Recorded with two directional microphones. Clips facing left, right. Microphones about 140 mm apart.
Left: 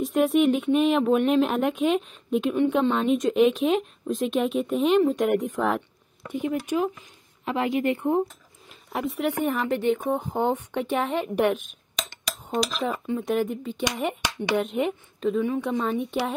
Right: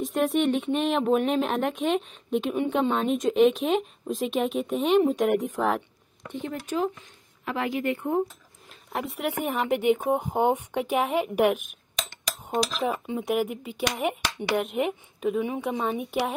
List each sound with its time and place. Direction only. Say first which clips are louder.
0.0 s a woman's voice: left 3 dB; centre (ahead or behind)
6.2 s speech: left 6 dB; 10° left (ahead or behind)
7.4 s a woman's voice: left 3 dB; 25° left (ahead or behind)
8.9 s a woman's voice: left 3 dB; centre (ahead or behind)
9.4 s a woman's voice: right 1 dB; 15° right (ahead or behind)
12.8 s a woman's voice: left 1 dB; 15° right (ahead or behind)